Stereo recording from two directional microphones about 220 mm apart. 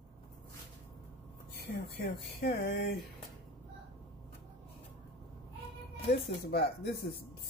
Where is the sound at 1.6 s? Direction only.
50° left (ahead or behind).